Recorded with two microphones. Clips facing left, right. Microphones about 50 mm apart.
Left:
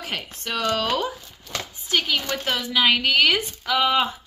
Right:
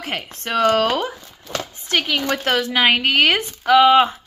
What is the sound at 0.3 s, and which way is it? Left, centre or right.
Speech, right.